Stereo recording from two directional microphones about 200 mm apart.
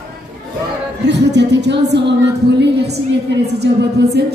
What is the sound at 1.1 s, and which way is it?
Speech, 60° right (ahead or behind).